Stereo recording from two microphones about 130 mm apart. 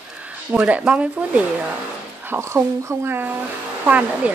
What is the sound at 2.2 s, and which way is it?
Speech, 20° right (ahead or behind).